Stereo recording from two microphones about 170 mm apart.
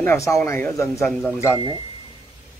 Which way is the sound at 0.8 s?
Centre (ahead or behind).